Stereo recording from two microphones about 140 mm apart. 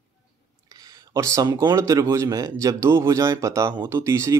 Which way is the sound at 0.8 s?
25° right (ahead or behind).